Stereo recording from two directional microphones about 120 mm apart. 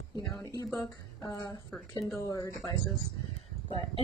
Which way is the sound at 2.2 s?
25° left (ahead or behind).